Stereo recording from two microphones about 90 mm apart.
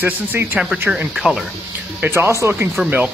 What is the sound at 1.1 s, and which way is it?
Speech, centre (ahead or behind).